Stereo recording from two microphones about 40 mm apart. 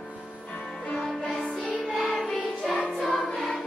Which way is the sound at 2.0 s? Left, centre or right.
Centre.